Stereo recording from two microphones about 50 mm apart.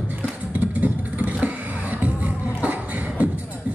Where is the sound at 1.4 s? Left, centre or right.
Right.